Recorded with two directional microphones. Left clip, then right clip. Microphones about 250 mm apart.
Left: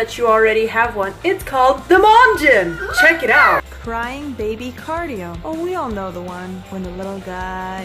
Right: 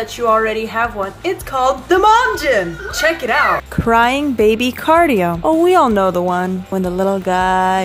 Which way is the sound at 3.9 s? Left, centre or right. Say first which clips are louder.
Right 11 dB; right.